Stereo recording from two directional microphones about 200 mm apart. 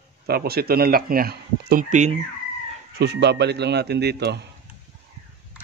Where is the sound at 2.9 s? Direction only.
60° right (ahead or behind).